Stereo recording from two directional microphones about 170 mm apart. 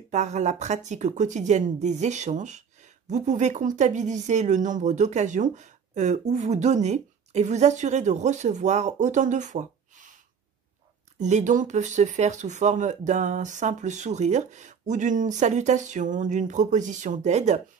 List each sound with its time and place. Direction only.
0.1 s speech: 45° right (ahead or behind)
11.1 s speech: 45° right (ahead or behind)